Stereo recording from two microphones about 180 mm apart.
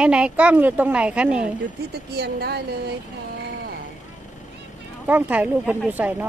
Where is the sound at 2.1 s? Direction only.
65° right (ahead or behind).